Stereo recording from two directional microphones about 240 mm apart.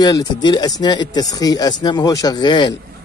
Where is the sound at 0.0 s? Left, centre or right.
Centre.